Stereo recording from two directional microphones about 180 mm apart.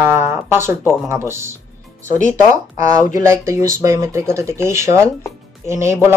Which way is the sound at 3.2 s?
15° right (ahead or behind).